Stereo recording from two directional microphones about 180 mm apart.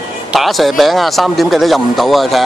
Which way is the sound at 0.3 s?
Centre (ahead or behind).